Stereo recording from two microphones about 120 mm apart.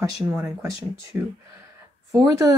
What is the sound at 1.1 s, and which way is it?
Speech, 20° right (ahead or behind).